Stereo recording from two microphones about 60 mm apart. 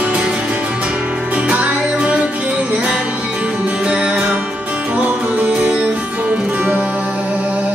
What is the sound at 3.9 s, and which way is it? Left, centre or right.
Music, right.